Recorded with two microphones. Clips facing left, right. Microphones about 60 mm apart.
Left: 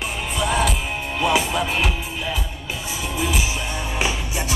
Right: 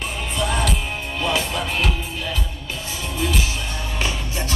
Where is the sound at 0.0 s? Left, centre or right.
Centre.